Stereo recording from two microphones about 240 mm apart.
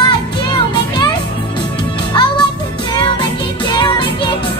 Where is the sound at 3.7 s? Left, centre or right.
Centre.